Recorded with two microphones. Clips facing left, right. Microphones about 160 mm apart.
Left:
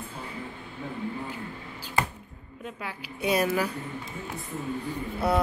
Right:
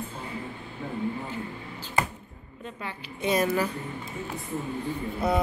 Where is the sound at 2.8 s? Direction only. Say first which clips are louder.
Even; 10° left (ahead or behind).